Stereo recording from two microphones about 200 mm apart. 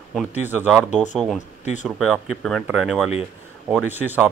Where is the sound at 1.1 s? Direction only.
Centre (ahead or behind).